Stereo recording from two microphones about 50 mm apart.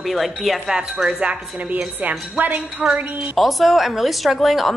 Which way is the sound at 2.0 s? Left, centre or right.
Right.